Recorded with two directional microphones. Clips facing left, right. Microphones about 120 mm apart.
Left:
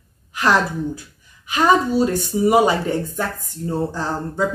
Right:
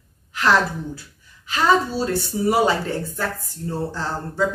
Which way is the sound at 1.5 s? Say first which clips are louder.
Left 3 dB; 15° left (ahead or behind).